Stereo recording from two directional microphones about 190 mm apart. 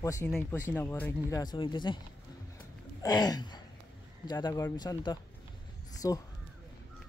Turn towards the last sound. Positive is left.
turn(degrees=15)  # may be behind; listen again after turning